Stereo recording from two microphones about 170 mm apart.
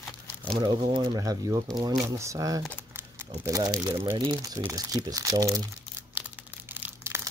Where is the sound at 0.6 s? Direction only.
25° right (ahead or behind).